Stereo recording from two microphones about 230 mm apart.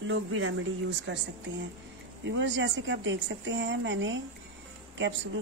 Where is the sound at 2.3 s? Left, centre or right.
Right.